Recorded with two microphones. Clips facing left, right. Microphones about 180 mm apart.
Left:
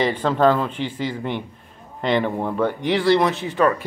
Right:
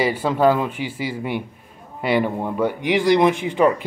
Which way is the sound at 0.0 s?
10° right (ahead or behind).